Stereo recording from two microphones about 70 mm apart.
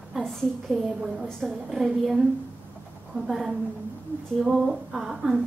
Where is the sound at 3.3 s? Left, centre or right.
Centre.